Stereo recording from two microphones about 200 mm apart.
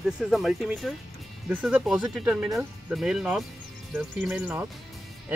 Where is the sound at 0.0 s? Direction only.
Centre (ahead or behind).